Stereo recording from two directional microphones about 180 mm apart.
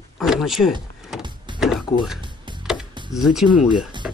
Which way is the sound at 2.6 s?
Centre (ahead or behind).